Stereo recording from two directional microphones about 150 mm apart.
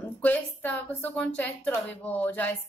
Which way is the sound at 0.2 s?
10° left (ahead or behind).